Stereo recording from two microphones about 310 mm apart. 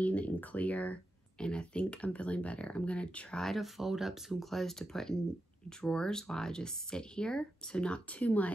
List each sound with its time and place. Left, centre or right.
0.0 s speech: centre